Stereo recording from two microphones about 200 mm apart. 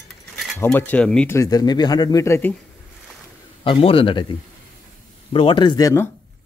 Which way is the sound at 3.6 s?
25° left (ahead or behind).